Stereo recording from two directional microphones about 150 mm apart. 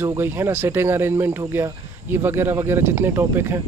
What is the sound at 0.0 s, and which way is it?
Speech, 15° right (ahead or behind).